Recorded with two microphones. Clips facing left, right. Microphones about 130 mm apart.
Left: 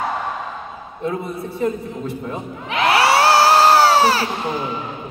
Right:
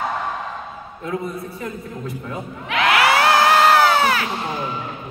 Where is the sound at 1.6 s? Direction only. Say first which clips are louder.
Left 7 dB; 30° left (ahead or behind).